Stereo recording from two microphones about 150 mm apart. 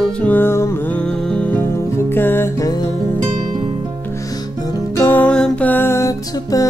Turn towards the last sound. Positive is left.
turn(degrees=20)  # may be behind; listen again after turning